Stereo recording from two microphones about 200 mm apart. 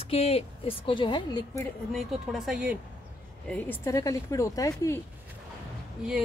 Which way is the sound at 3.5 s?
10° left (ahead or behind).